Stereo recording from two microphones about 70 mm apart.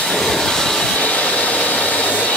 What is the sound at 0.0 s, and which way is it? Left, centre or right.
Vehicle, centre.